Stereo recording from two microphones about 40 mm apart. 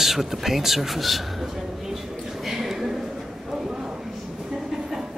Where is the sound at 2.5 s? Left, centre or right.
Centre.